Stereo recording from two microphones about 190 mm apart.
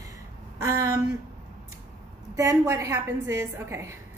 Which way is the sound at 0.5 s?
15° right (ahead or behind).